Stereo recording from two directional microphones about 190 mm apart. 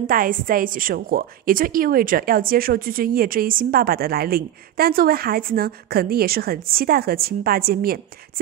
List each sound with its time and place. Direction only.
0.0 s a woman's voice: 45° right (ahead or behind)